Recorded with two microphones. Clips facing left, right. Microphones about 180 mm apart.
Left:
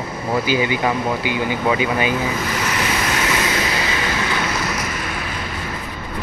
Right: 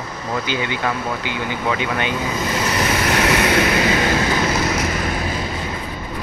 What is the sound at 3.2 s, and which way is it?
Vehicle, 65° right (ahead or behind).